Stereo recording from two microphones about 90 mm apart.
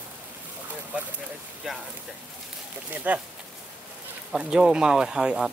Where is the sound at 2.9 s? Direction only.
15° right (ahead or behind).